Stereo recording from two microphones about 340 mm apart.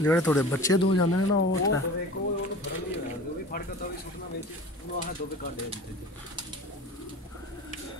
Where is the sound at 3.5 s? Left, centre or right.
Left.